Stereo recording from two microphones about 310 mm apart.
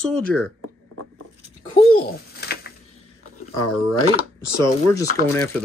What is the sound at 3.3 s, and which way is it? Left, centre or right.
Speech, left.